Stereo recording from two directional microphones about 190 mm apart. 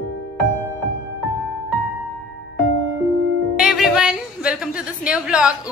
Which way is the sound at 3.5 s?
5° right (ahead or behind).